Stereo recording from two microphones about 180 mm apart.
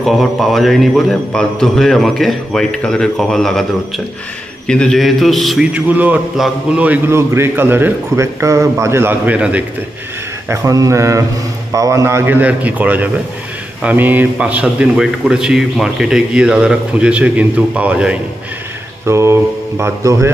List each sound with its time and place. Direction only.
0.0 s a man's voice: centre (ahead or behind); by 20.2 s 15° right (ahead or behind)